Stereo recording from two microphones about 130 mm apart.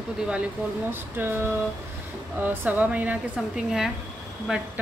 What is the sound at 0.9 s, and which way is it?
A woman's voice, 15° right (ahead or behind).